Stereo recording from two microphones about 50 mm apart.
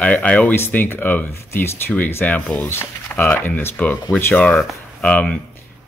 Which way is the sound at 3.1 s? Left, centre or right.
Left.